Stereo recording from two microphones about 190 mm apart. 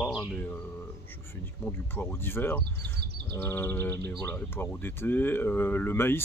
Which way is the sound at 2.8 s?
60° right (ahead or behind).